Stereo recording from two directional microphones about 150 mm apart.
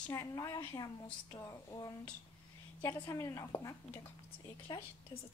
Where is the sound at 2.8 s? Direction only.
20° left (ahead or behind).